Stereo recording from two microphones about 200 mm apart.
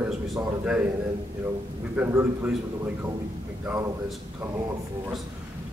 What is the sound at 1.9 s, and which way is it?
Speech, 10° right (ahead or behind).